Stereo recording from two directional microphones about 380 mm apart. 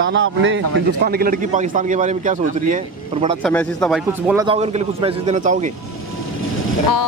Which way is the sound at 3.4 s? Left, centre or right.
Centre.